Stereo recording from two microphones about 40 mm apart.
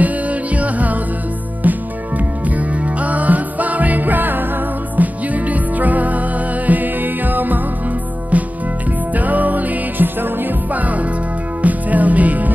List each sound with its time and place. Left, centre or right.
0.0 s music: right
9.1 s music: right